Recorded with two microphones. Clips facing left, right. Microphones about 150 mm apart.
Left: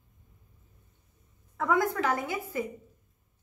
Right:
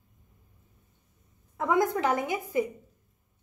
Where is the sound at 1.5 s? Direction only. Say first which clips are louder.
Right 2 dB; 20° right (ahead or behind).